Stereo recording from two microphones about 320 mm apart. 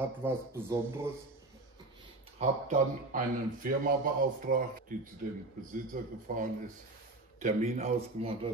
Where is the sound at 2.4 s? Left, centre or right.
Right.